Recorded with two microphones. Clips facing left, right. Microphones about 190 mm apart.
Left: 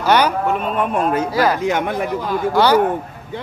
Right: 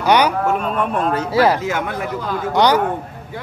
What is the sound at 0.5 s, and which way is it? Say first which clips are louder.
Speech: even; 5° left (ahead or behind).